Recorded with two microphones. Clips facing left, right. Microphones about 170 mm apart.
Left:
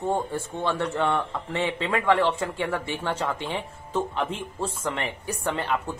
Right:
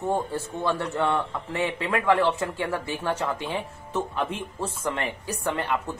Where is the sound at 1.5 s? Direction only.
20° left (ahead or behind).